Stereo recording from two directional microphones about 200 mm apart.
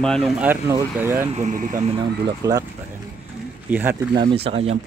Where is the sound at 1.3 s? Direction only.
40° right (ahead or behind).